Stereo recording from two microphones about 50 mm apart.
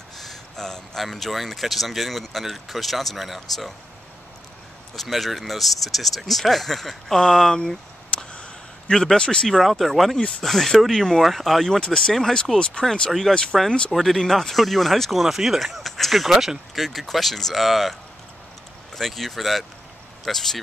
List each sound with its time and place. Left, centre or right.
0.2 s speech: centre
4.9 s speech: centre
7.5 s a sound: centre
9.5 s speech: centre
13.9 s speech: centre
18.9 s speech: centre